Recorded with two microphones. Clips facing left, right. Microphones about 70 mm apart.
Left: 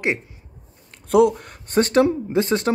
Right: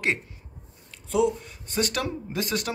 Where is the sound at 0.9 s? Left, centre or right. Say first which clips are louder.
Left 8 dB; left.